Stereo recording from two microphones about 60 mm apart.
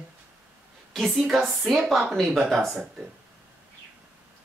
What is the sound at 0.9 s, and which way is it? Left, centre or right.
Speech, centre.